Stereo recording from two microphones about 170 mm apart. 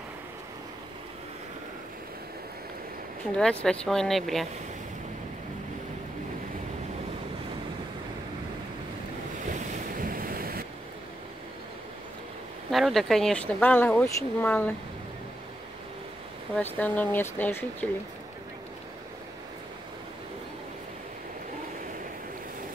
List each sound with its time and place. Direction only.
3.3 s speech: 5° left (ahead or behind)
9.5 s waves: 55° right (ahead or behind)
12.7 s speech: centre (ahead or behind)
16.5 s speech: 10° left (ahead or behind)